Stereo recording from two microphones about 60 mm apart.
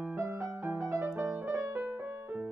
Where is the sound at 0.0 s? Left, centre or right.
Right.